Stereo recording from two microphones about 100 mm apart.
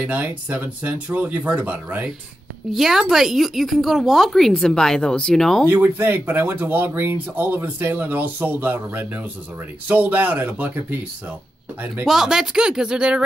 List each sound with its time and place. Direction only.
0.0 s speech: 15° right (ahead or behind)
2.7 s speech: 5° right (ahead or behind)
5.7 s speech: 20° right (ahead or behind)